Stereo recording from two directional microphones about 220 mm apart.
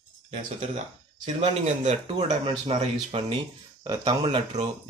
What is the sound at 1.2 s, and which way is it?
Speech, 30° right (ahead or behind).